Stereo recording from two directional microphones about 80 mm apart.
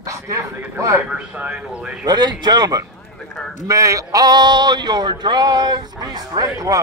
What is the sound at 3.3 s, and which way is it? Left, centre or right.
Speech, centre.